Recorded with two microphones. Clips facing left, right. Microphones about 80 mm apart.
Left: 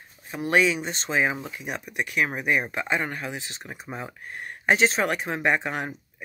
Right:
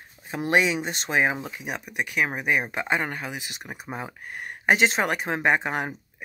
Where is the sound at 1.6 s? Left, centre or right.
Centre.